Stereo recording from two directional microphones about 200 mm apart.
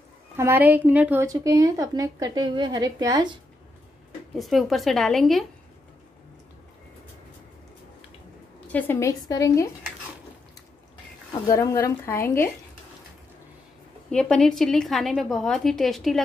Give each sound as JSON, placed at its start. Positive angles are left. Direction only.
{"t": 0.4, "sound": "speech", "side_deg": -10}
{"t": 4.4, "sound": "a woman's voice", "side_deg": 0}
{"t": 8.7, "sound": "speech", "side_deg": 10}
{"t": 11.3, "sound": "speech", "side_deg": 20}
{"t": 14.1, "sound": "a woman's voice", "side_deg": 5}